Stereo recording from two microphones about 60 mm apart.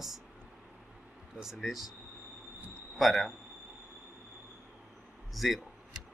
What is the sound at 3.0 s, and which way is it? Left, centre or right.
Speech, centre.